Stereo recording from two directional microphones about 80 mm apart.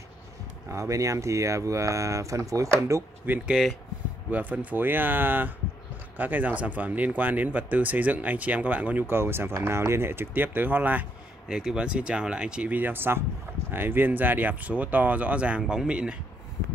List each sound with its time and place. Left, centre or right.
0.7 s speech: right
3.3 s speech: right
11.4 s speech: centre
15.6 s speech: centre